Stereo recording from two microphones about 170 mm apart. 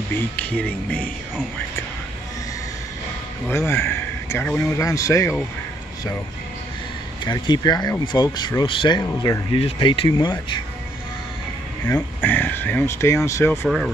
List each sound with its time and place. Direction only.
0.4 s a man's voice: 5° left (ahead or behind)
3.4 s a man's voice: 15° left (ahead or behind)
7.2 s speech: 25° left (ahead or behind)
11.9 s a man's voice: 10° left (ahead or behind)